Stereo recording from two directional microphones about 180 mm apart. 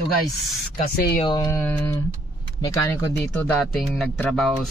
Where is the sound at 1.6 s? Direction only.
5° left (ahead or behind).